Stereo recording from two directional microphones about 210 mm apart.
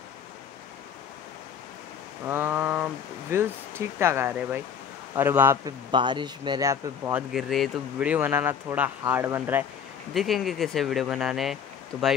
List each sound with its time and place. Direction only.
2.2 s speech: 10° right (ahead or behind)
5.9 s speech: 20° right (ahead or behind)
10.1 s speech: centre (ahead or behind)